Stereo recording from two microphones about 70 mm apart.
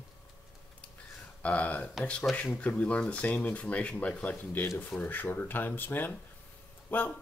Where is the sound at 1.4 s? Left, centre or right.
Left.